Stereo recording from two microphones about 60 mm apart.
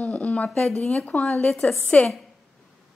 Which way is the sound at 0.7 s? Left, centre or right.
Centre.